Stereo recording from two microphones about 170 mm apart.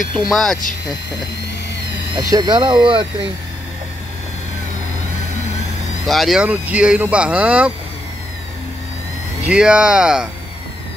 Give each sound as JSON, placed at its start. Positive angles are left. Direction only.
{"t": 0.3, "sound": "speech", "side_deg": 0}
{"t": 2.1, "sound": "speech", "side_deg": -25}
{"t": 6.0, "sound": "speech", "side_deg": 0}
{"t": 9.5, "sound": "speech", "side_deg": -5}